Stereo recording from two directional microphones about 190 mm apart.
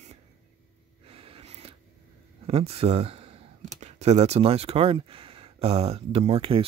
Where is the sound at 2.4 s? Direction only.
30° right (ahead or behind).